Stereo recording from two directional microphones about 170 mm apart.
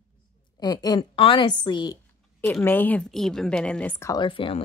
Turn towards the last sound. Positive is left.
turn(degrees=30)  # may be behind; listen again after turning